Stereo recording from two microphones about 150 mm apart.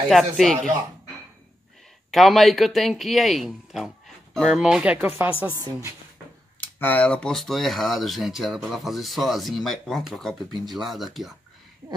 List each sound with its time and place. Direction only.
0.1 s speech: centre (ahead or behind)
2.0 s speech: centre (ahead or behind); by 5.9 s 20° right (ahead or behind)
6.8 s speech: 10° left (ahead or behind)